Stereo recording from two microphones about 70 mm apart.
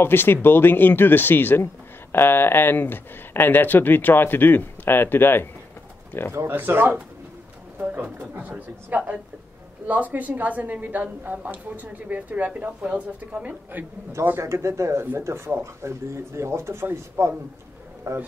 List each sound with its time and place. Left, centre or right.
0.0 s speech: left
6.3 s a woman's voice: right
14.4 s speech: right